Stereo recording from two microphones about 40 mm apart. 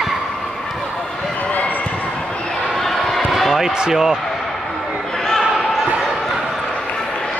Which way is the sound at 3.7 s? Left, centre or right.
Centre.